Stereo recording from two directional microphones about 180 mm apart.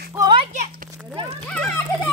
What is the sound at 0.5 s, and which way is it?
Speech, 50° right (ahead or behind).